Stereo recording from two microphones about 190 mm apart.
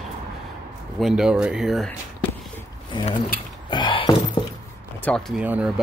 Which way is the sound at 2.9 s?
25° left (ahead or behind).